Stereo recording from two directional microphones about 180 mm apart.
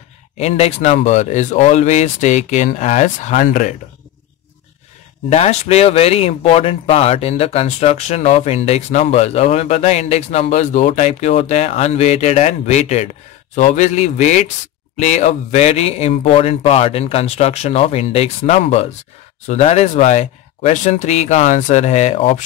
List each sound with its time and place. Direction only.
0.4 s speech: 35° left (ahead or behind)
5.3 s speech: 35° left (ahead or behind)